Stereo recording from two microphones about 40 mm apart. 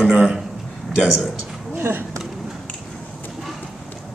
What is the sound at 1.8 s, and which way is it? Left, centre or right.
Speech, right.